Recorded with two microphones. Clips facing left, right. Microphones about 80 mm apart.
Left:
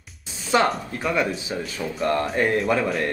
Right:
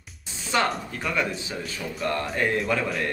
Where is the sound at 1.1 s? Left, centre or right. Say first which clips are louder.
Left 3 dB; centre.